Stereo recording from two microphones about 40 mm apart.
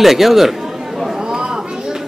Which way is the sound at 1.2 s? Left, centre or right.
Centre.